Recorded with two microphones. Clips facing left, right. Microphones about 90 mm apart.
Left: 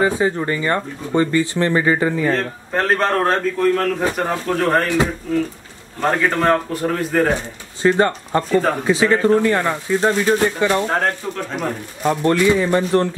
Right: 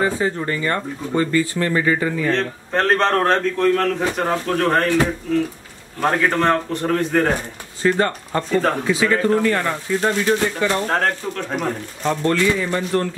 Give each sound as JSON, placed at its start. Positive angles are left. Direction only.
{"t": 0.0, "sound": "speech", "side_deg": 15}
{"t": 2.2, "sound": "a man's voice", "side_deg": 5}
{"t": 5.9, "sound": "a man's voice", "side_deg": 0}
{"t": 7.8, "sound": "speech", "side_deg": 20}
{"t": 8.4, "sound": "a man's voice", "side_deg": 5}
{"t": 8.8, "sound": "speech", "side_deg": 25}
{"t": 10.7, "sound": "a man's voice", "side_deg": 5}
{"t": 12.3, "sound": "speech", "side_deg": 20}